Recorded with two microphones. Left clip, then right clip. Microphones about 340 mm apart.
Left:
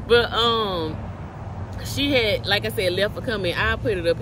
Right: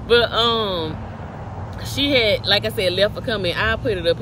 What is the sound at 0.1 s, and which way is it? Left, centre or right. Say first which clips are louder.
Speech: right 2 dB; centre.